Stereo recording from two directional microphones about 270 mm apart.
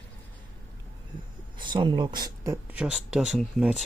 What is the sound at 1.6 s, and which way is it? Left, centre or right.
Speech, centre.